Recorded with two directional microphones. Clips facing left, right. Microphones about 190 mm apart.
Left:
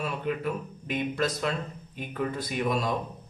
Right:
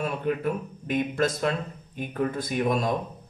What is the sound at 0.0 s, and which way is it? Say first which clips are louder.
A man's voice: right 3 dB; 50° right (ahead or behind).